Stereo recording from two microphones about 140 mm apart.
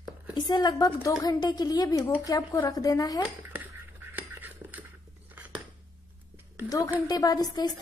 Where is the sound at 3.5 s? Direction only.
15° right (ahead or behind).